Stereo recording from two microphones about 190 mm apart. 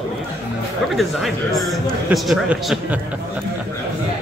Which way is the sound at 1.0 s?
Centre (ahead or behind).